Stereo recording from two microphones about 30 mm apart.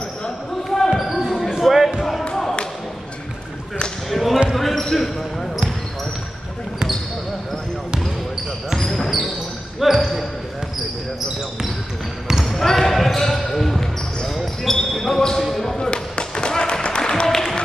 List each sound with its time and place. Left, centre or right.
0.7 s basketball bounce: centre
4.1 s basketball bounce: centre
8.7 s basketball bounce: centre
9.9 s basketball bounce: centre
12.4 s basketball bounce: centre
14.7 s basketball bounce: centre
15.8 s a sound: left; by 17.6 s centre